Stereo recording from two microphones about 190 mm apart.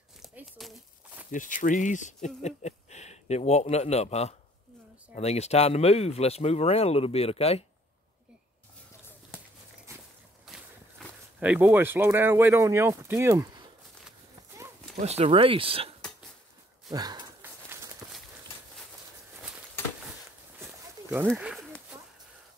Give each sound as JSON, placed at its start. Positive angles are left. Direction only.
{"t": 0.2, "sound": "a sound", "side_deg": 0}
{"t": 1.3, "sound": "speech", "side_deg": 45}
{"t": 10.4, "sound": "speech", "side_deg": 0}
{"t": 15.0, "sound": "speech", "side_deg": -35}
{"t": 16.9, "sound": "a sound", "side_deg": -20}
{"t": 21.3, "sound": "speech", "side_deg": 0}